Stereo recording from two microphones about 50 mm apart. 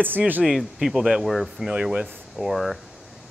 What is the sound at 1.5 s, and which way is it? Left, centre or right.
Speech, centre.